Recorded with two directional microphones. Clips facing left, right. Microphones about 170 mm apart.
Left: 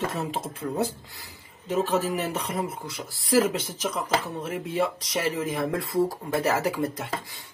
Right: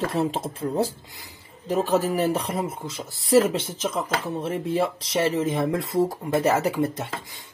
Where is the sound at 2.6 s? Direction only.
25° right (ahead or behind).